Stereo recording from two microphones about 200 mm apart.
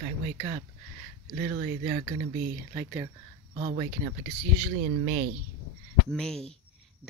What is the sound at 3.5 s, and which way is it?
Speech, 35° right (ahead or behind).